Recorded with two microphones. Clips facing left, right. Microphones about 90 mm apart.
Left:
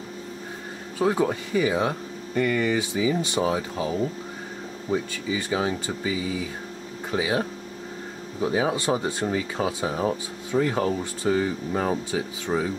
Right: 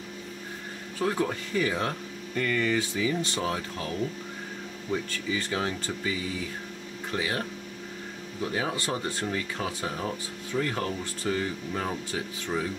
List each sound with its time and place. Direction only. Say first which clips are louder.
0.9 s speech: left 5 dB; 15° left (ahead or behind)
4.9 s speech: left 4 dB; 15° left (ahead or behind)